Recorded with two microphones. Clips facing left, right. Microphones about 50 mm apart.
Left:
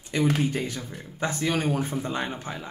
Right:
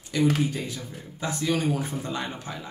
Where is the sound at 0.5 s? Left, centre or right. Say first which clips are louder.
Left 3 dB; left.